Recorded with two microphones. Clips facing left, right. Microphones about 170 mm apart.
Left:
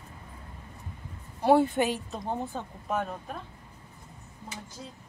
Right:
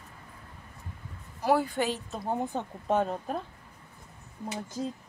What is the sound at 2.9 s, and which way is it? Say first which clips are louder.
Speech: right 5 dB; 30° right (ahead or behind).